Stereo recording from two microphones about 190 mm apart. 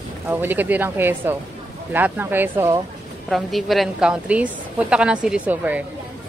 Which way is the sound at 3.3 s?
Centre (ahead or behind).